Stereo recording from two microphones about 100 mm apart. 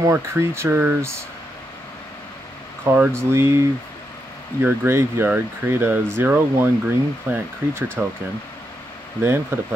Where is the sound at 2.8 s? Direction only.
25° right (ahead or behind).